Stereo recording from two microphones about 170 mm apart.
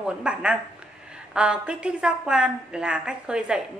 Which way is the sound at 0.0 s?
5° right (ahead or behind).